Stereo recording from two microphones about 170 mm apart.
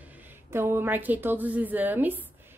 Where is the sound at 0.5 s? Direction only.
15° right (ahead or behind).